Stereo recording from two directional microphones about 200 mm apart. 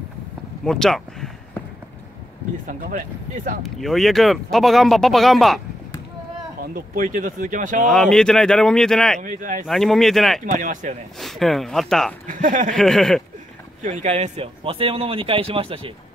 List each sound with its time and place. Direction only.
0.7 s speech: centre (ahead or behind)
3.6 s speech: centre (ahead or behind)
6.6 s speech: 45° right (ahead or behind)
7.9 s speech: centre (ahead or behind)
9.2 s speech: 40° right (ahead or behind)
9.7 s speech: centre (ahead or behind)
10.4 s speech: 40° right (ahead or behind)
11.1 s speech: centre (ahead or behind)
12.3 s speech: 40° right (ahead or behind)
12.7 s speech: centre (ahead or behind)
13.8 s speech: 35° right (ahead or behind)